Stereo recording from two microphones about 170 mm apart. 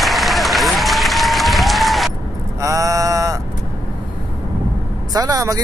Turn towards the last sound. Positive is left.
turn(degrees=-20)  # may be behind; listen again after turning